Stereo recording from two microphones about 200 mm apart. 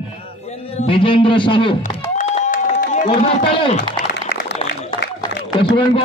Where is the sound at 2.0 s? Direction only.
35° left (ahead or behind).